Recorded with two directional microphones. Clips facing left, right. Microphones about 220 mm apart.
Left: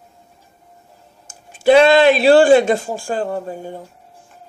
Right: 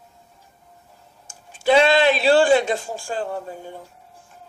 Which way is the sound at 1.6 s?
45° left (ahead or behind).